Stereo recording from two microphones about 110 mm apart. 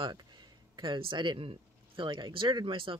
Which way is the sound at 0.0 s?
40° right (ahead or behind).